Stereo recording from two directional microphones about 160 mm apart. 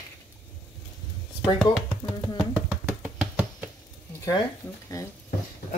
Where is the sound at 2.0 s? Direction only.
25° left (ahead or behind).